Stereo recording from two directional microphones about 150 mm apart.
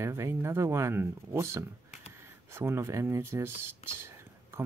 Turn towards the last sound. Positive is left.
turn(degrees=-15)  # may be behind; listen again after turning